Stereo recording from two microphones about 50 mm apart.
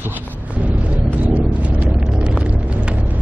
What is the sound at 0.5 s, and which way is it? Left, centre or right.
Vehicle, right.